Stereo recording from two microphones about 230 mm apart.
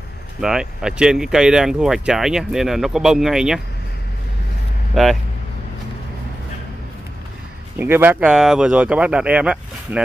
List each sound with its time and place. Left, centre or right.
0.4 s speech: centre
5.0 s speech: centre
7.8 s speech: centre